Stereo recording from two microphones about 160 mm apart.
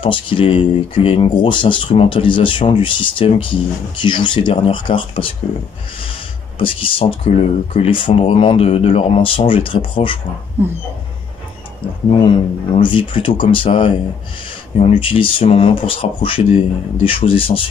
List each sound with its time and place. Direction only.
0.0 s speech: 30° left (ahead or behind)
6.6 s speech: 35° left (ahead or behind)
10.6 s dog: 15° right (ahead or behind)
12.1 s speech: 35° left (ahead or behind)